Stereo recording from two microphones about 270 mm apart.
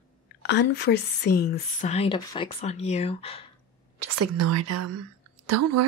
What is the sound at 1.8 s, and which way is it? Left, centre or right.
Speech, left.